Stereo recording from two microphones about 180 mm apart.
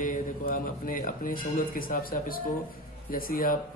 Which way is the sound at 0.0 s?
50° left (ahead or behind).